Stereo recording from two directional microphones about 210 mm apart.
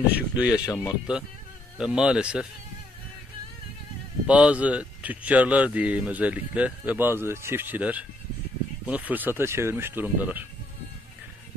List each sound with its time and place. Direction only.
0.1 s speech: 5° right (ahead or behind)
0.7 s speech: 15° left (ahead or behind)
1.8 s speech: 5° right (ahead or behind)
4.3 s speech: 5° right (ahead or behind)